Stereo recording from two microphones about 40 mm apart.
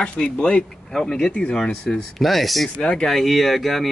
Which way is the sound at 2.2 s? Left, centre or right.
Centre.